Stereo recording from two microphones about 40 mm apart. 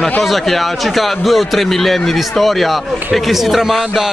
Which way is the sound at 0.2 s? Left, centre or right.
Centre.